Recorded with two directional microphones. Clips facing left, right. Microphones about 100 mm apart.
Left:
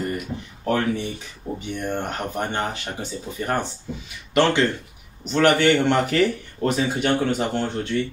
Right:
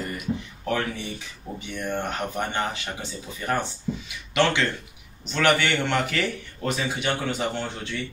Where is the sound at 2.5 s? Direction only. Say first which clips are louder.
Left 2 dB; 45° left (ahead or behind).